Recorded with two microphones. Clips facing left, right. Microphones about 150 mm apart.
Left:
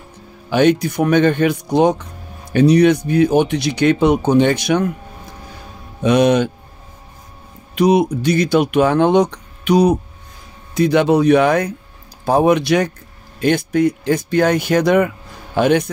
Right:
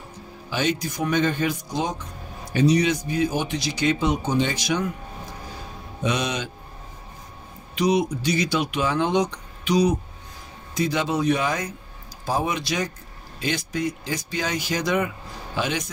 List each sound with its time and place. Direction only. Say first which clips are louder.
0.5 s speech: left 11 dB; 60° left (ahead or behind)
6.0 s speech: left 13 dB; 55° left (ahead or behind)
7.7 s speech: left 8 dB; 55° left (ahead or behind)